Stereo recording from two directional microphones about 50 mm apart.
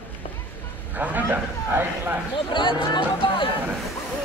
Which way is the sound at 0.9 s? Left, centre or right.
Right.